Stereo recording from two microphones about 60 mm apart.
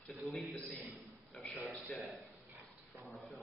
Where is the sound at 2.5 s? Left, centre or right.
Right.